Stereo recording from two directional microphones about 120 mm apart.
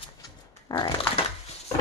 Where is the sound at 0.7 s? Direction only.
30° left (ahead or behind).